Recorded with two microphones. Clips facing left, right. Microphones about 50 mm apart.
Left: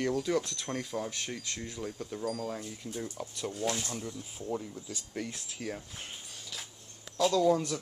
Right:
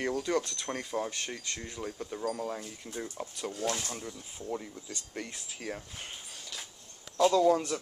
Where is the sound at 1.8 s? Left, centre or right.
Centre.